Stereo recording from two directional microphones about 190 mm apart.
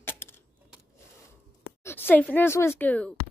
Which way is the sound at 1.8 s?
10° left (ahead or behind).